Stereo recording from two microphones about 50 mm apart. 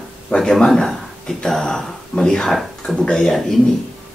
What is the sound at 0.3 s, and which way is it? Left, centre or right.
Speech, centre.